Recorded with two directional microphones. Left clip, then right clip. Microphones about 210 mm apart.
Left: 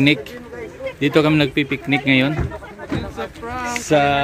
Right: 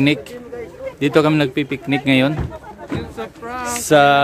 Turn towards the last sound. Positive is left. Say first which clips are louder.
# right 4 dB
turn(degrees=-20)  # may be behind; listen again after turning